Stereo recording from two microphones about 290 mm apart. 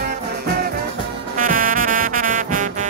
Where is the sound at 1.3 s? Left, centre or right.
Right.